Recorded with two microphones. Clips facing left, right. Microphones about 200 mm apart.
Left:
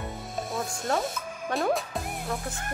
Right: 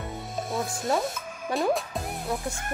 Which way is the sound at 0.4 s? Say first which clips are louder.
Right 2 dB; centre (ahead or behind).